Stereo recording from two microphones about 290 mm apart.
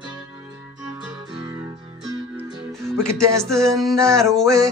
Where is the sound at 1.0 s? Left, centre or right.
Centre.